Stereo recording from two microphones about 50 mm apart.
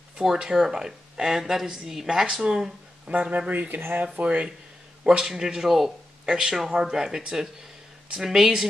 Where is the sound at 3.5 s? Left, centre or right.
Right.